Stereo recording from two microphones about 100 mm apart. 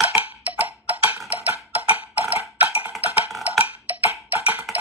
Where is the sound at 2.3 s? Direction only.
15° right (ahead or behind).